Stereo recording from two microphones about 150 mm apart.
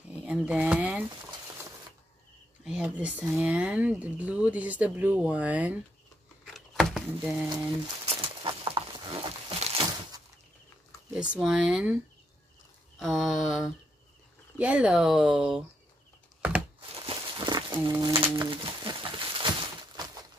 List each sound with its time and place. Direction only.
0.1 s speech: 10° right (ahead or behind)
2.6 s speech: 5° right (ahead or behind)
6.4 s a sound: centre (ahead or behind)
7.1 s speech: 15° right (ahead or behind)
8.0 s crumpling: 35° right (ahead or behind)
11.1 s speech: 5° right (ahead or behind)
13.0 s mantra: centre (ahead or behind)
14.6 s speech: 10° right (ahead or behind)
17.0 s a sound: 30° right (ahead or behind)
18.0 s speech: 40° right (ahead or behind)
18.5 s a sound: 35° right (ahead or behind)